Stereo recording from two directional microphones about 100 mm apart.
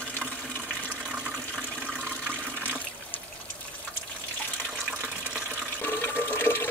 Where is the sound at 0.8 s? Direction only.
15° right (ahead or behind).